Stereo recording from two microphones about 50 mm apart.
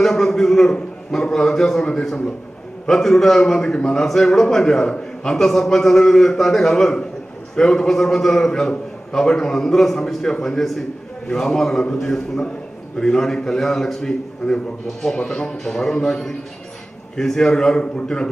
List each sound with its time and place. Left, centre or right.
0.0 s a man's voice: centre